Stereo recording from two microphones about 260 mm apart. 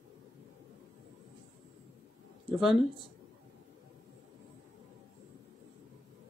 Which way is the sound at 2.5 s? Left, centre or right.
Centre.